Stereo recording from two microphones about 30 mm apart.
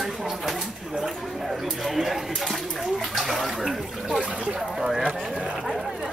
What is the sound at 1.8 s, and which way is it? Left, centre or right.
Speech, centre.